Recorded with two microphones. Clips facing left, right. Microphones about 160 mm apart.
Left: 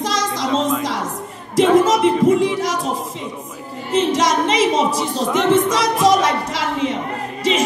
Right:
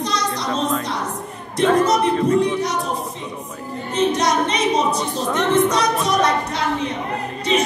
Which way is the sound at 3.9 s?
90° left.